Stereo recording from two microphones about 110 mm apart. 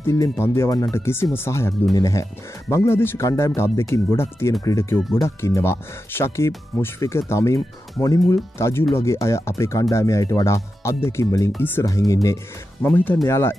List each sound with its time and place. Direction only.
0.0 s speech: 25° left (ahead or behind)
11.8 s speech: 30° left (ahead or behind)
12.8 s speech: 20° left (ahead or behind)